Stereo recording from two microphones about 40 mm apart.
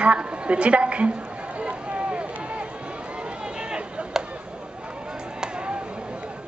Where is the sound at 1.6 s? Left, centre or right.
Right.